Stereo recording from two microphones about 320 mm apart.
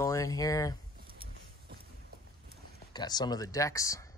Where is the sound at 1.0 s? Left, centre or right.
Right.